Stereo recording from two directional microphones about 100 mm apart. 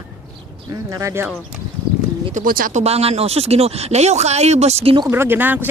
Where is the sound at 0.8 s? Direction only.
30° right (ahead or behind).